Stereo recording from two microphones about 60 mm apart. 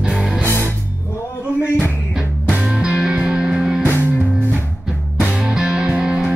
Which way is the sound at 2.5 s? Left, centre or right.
Centre.